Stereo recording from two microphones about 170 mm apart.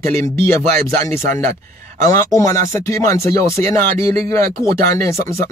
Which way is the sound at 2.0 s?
20° left (ahead or behind).